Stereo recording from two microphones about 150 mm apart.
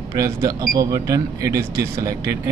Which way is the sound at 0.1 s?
25° right (ahead or behind).